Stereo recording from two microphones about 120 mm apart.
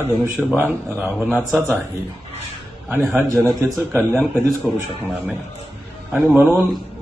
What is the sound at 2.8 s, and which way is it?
A man's voice, 20° right (ahead or behind).